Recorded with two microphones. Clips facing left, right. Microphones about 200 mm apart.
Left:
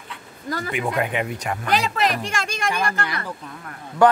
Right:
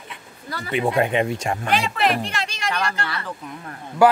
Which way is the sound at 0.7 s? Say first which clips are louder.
Right 5 dB; 25° right (ahead or behind).